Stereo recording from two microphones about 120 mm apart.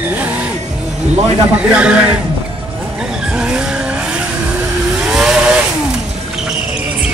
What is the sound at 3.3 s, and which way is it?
Vehicle, 5° right (ahead or behind).